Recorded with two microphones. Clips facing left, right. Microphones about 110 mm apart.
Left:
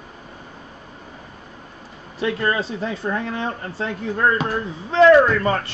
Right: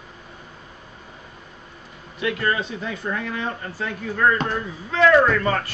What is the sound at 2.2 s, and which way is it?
Speech, 30° left (ahead or behind).